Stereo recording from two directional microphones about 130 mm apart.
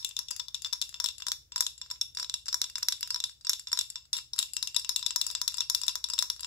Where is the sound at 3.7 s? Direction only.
30° left (ahead or behind).